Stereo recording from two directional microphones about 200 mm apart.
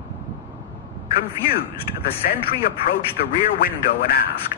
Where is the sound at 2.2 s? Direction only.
45° left (ahead or behind).